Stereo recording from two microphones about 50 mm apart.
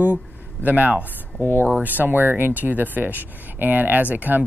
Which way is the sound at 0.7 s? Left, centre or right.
Right.